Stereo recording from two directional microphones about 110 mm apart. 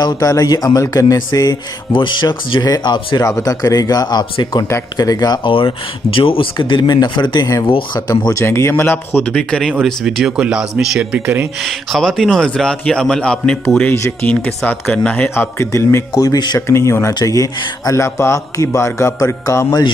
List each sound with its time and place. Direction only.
0.0 s speech: 35° left (ahead or behind)
5.5 s speech: 55° left (ahead or behind)
8.3 s speech: 25° left (ahead or behind); by 11.4 s 10° right (ahead or behind)
11.6 s a man's voice: 5° left (ahead or behind); by 16.0 s 25° left (ahead or behind)
16.1 s speech: 35° left (ahead or behind)
16.5 s a man's voice: 25° left (ahead or behind)